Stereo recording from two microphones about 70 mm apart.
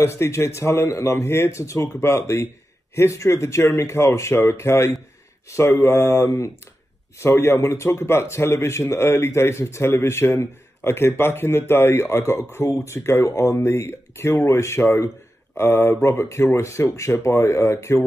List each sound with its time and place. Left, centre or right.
0.0 s a man's voice: left